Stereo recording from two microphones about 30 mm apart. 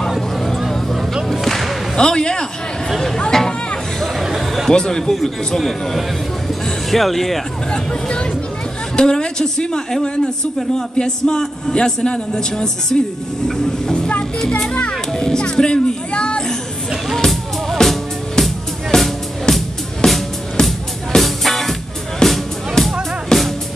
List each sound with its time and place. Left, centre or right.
1.3 s whip: centre
2.0 s a man's voice: left
3.3 s a sound: centre
4.2 s chatter: centre
4.6 s a man's voice: left
5.6 s speech: centre
7.7 s a man's voice: left
11.0 s a man's voice: left
15.1 s a man's voice: centre
15.5 s speech: left
17.2 s music: centre
21.2 s music: centre